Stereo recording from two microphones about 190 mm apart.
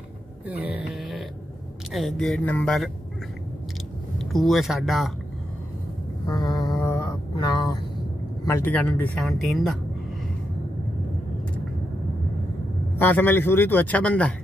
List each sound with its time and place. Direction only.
0.5 s a sound: 10° right (ahead or behind)
1.9 s speech: centre (ahead or behind)
4.2 s speech: centre (ahead or behind)
6.2 s a sound: 20° left (ahead or behind)
8.5 s speech: 10° left (ahead or behind)
13.0 s speech: 10° left (ahead or behind)